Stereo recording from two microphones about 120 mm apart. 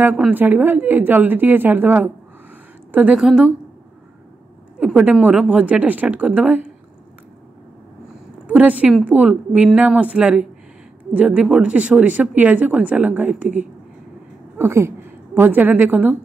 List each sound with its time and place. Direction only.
0.3 s a woman's voice: 15° right (ahead or behind)
3.2 s a woman's voice: 5° right (ahead or behind)
4.7 s speech: 5° right (ahead or behind)
8.5 s a woman's voice: 15° right (ahead or behind)
14.6 s a woman's voice: 25° right (ahead or behind)